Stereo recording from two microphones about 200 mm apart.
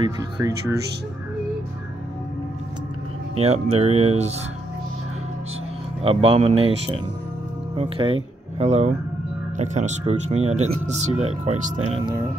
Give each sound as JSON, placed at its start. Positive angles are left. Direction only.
{"t": 0.0, "sound": "speech", "side_deg": -15}
{"t": 3.3, "sound": "speech", "side_deg": -30}
{"t": 6.0, "sound": "speech", "side_deg": -25}